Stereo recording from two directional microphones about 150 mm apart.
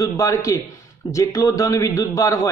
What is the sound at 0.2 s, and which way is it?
A man's voice, 20° left (ahead or behind).